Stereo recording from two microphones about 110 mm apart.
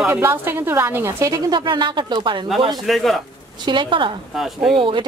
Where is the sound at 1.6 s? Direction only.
45° right (ahead or behind).